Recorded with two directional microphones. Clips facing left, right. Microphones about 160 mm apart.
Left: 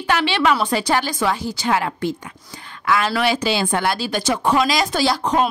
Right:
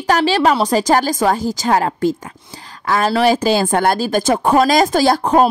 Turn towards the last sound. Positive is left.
turn(degrees=-45)  # may be behind; listen again after turning